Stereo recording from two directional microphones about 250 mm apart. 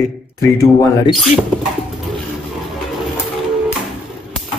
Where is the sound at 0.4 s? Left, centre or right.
Centre.